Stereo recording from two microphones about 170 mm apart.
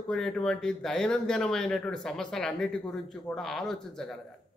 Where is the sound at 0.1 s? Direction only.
5° left (ahead or behind).